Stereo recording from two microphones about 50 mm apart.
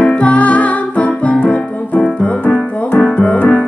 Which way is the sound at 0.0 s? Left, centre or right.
Left.